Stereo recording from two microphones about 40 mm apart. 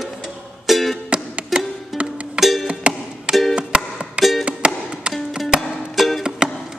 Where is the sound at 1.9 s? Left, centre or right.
Centre.